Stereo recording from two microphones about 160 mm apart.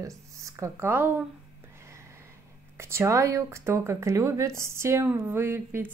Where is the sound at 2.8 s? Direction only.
15° right (ahead or behind).